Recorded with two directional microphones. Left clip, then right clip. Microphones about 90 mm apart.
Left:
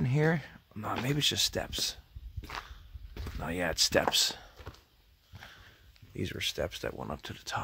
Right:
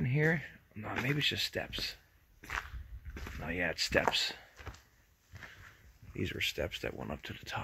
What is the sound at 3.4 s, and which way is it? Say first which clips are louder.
Speech: left 2 dB; 45° left (ahead or behind).